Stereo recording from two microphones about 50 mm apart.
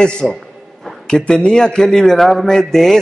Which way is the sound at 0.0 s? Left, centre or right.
Centre.